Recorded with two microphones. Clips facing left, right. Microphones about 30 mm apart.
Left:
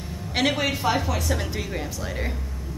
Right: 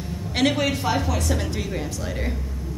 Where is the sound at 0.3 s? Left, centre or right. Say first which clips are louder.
Right 2 dB; centre.